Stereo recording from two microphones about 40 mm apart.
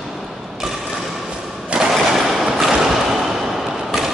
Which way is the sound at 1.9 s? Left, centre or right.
Centre.